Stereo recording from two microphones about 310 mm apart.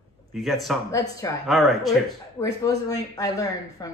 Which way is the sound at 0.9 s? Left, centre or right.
Centre.